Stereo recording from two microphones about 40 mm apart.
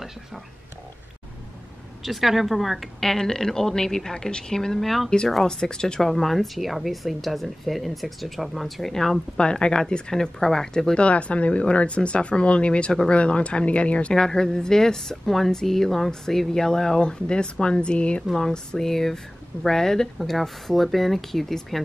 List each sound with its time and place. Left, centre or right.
2.0 s speech: centre
3.0 s speech: centre
5.4 s speech: centre
5.9 s speech: centre
9.4 s speech: left
11.0 s speech: left
14.1 s speech: centre
18.3 s speech: centre